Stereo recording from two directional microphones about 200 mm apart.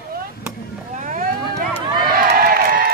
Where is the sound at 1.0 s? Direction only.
40° right (ahead or behind).